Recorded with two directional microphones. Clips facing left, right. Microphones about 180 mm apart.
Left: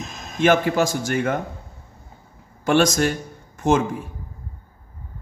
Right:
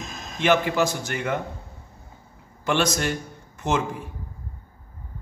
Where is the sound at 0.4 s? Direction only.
45° left (ahead or behind).